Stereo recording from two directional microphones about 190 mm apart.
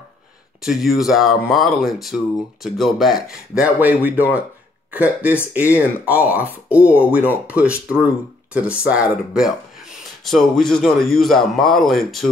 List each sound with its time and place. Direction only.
0.6 s speech: centre (ahead or behind)